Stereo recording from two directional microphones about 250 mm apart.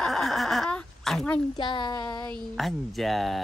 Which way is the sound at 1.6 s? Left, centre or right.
Centre.